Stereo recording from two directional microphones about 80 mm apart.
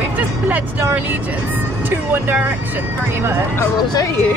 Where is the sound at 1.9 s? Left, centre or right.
Right.